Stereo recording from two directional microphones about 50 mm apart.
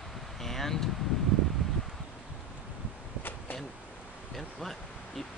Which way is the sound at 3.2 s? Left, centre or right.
Left.